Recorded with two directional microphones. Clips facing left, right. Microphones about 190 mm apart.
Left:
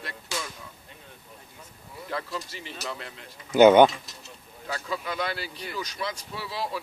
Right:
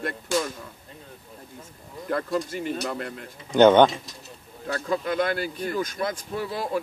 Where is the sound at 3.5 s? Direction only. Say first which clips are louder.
Even; 10° left (ahead or behind).